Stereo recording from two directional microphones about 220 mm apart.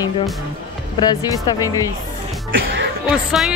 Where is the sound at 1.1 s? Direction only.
15° left (ahead or behind).